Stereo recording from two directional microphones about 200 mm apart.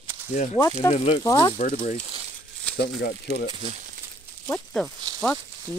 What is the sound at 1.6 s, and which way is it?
Speech, 40° left (ahead or behind).